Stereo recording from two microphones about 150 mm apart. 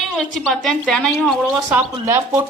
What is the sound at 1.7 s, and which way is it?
Speech, 15° right (ahead or behind).